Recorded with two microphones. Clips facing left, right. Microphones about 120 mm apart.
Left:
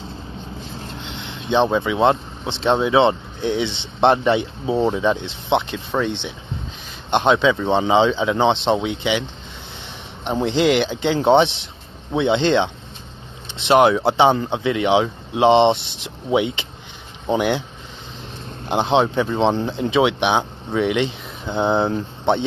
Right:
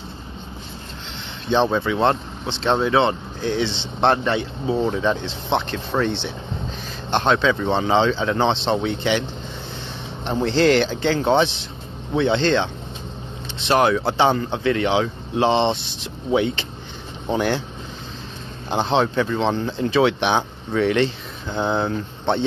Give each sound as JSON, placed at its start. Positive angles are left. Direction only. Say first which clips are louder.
{"t": 1.5, "sound": "speech", "louder": "left 1 dB", "side_deg": 10}
{"t": 3.0, "sound": "speech", "louder": "left 3 dB", "side_deg": 25}
{"t": 5.7, "sound": "speech", "louder": "even", "side_deg": 5}
{"t": 7.1, "sound": "speech", "louder": "left 2 dB", "side_deg": 15}
{"t": 10.2, "sound": "speech", "louder": "even", "side_deg": 15}
{"t": 13.7, "sound": "speech", "louder": "left 4 dB", "side_deg": 25}
{"t": 18.7, "sound": "speech", "louder": "left 2 dB", "side_deg": 15}